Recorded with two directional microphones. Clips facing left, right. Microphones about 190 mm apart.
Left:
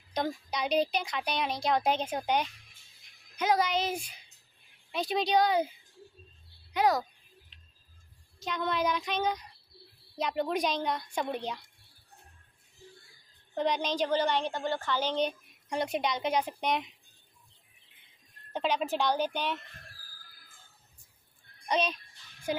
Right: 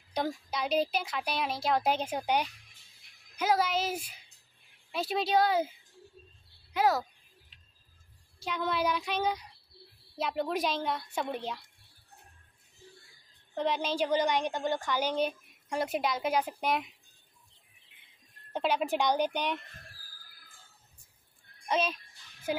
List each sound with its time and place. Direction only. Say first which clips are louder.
0.2 s child singing: even; 10° right (ahead or behind)
0.5 s speech: left 2 dB; 5° right (ahead or behind)
3.3 s child singing: left 1 dB; 5° right (ahead or behind)
4.9 s speech: left 1 dB; 5° right (ahead or behind)
6.7 s a sound: left 1 dB; 5° right (ahead or behind)
8.4 s child singing: even; 10° right (ahead or behind)
10.1 s speech: left 1 dB; 5° right (ahead or behind)
13.6 s speech: left 1 dB; 5° right (ahead or behind)
18.5 s child singing: right 1 dB; 10° right (ahead or behind)
21.6 s a child's voice: even; 5° right (ahead or behind)